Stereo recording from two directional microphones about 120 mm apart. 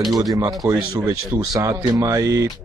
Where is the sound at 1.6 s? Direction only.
25° right (ahead or behind).